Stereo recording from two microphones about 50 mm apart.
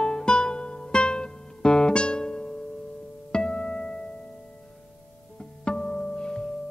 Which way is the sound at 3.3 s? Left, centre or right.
Centre.